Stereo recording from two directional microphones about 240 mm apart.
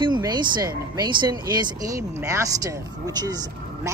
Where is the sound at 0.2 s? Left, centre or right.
Centre.